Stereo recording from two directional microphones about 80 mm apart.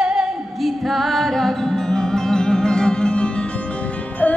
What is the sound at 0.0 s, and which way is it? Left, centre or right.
Music, centre.